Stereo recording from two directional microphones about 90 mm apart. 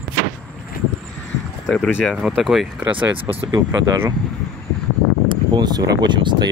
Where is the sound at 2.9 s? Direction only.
20° right (ahead or behind).